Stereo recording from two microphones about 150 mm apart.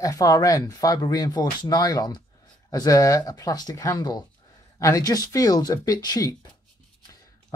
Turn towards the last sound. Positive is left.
turn(degrees=25)  # may be behind; listen again after turning